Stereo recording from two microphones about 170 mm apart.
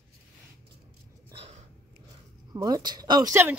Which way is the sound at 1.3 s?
30° right (ahead or behind).